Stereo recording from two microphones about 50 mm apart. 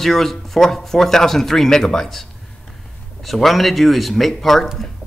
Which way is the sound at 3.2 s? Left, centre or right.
Centre.